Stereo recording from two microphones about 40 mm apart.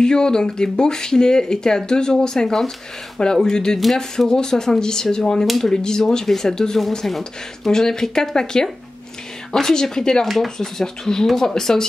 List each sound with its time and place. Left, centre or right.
0.0 s speech: centre
7.1 s speech: centre
7.7 s speech: centre
10.2 s speech: centre
10.6 s speech: centre